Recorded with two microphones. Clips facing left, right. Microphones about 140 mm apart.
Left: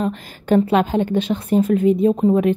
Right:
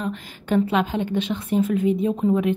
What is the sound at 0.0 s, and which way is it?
Speech, 40° left (ahead or behind).